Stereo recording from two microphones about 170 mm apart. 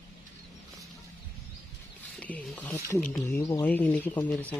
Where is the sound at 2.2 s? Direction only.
10° left (ahead or behind).